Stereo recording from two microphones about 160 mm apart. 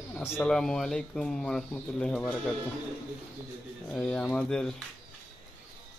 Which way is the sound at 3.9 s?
5° left (ahead or behind).